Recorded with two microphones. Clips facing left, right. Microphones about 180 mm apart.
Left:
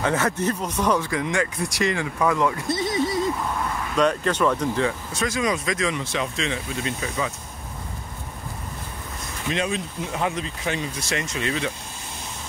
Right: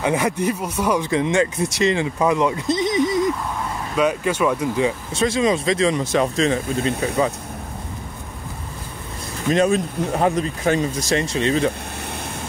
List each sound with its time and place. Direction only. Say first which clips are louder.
0.0 s speech: right 3 dB; 15° right (ahead or behind)
1.0 s speech: right 6 dB; 25° right (ahead or behind)
3.9 s speech: right 2 dB; 5° right (ahead or behind)
5.1 s speech: right 6 dB; 30° right (ahead or behind)
9.5 s speech: right 9 dB; 45° right (ahead or behind)